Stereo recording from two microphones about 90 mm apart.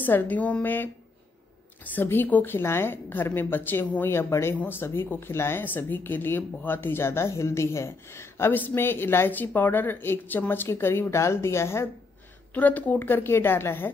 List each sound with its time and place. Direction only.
0.0 s speech: 20° left (ahead or behind)
1.9 s speech: 20° left (ahead or behind)
12.5 s speech: 15° left (ahead or behind)